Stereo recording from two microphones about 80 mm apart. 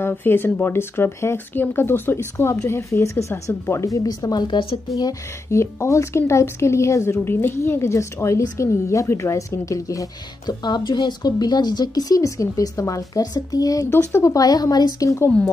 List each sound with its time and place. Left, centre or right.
0.1 s a woman's voice: left
4.9 s a woman's voice: left
10.4 s speech: left
13.8 s speech: left
15.0 s a woman's voice: left